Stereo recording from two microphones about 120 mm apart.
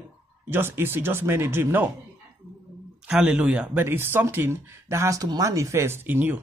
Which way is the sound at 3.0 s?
5° right (ahead or behind).